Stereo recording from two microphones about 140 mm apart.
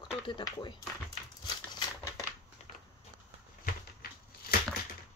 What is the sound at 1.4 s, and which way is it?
Crumpling, 30° left (ahead or behind).